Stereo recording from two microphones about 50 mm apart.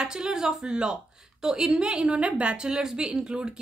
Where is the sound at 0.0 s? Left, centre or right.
Centre.